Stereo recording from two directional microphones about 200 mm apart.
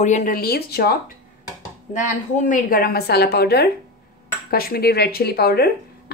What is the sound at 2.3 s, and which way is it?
Speech, 45° left (ahead or behind).